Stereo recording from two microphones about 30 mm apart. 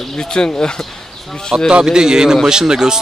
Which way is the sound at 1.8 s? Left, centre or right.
Right.